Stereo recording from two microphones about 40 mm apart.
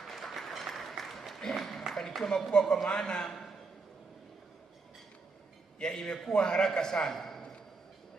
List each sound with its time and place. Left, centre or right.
0.1 s applause: centre
2.2 s a man's voice: centre
5.8 s a man's voice: centre